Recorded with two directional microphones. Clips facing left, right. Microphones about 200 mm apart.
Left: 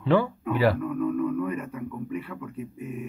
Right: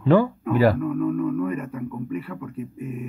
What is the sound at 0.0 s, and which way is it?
Speech, 45° right (ahead or behind).